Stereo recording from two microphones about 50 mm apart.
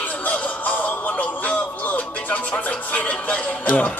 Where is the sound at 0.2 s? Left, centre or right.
Left.